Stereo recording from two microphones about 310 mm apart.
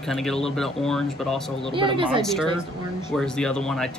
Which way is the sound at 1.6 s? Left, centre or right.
Centre.